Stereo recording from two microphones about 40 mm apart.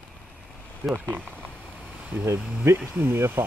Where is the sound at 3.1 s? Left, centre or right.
Right.